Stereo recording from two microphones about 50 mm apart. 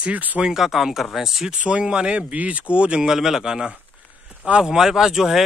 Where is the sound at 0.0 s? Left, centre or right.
Right.